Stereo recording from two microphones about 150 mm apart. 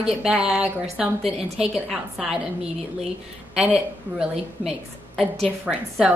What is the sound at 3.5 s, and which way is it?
A woman's voice, 5° right (ahead or behind).